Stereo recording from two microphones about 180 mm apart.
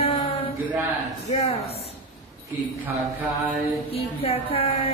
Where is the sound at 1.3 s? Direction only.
35° left (ahead or behind).